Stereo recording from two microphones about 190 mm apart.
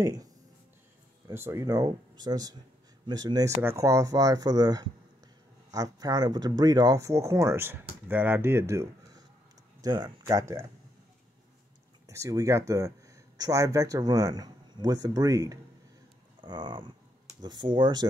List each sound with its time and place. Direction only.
0.0 s speech: 20° right (ahead or behind)
12.1 s speech: 15° right (ahead or behind)